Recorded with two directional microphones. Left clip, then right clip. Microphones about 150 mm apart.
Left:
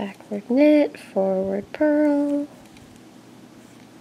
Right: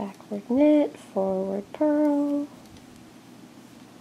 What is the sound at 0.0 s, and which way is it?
Speech, 20° left (ahead or behind).